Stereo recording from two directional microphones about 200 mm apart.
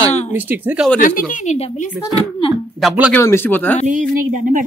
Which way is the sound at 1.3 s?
35° left (ahead or behind).